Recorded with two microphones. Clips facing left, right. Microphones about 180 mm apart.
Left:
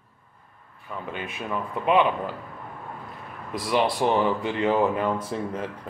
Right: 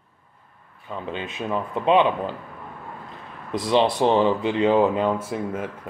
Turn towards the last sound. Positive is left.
turn(degrees=-10)  # may be behind; listen again after turning